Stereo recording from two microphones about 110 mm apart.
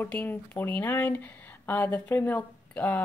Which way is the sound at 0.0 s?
15° left (ahead or behind).